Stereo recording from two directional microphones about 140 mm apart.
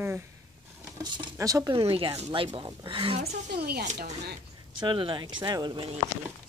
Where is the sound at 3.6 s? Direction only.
90° right.